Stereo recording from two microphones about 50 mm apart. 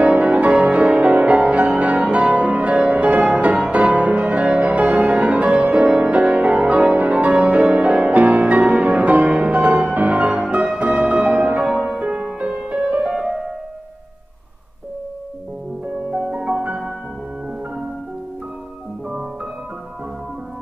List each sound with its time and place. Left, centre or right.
0.0 s music: right
5.9 s music: centre
16.3 s music: right